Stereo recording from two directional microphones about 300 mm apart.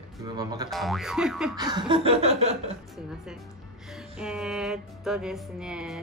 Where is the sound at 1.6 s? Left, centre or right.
Centre.